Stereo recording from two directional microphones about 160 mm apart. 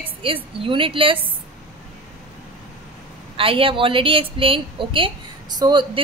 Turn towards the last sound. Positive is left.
turn(degrees=-30)  # may be behind; listen again after turning